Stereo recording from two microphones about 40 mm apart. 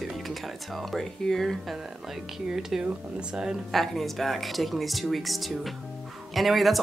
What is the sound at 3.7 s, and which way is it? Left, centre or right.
Speech, centre.